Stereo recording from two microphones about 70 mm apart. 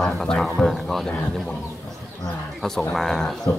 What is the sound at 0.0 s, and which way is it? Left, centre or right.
Speech, centre.